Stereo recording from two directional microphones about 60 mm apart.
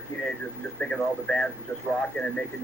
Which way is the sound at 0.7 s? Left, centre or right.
Centre.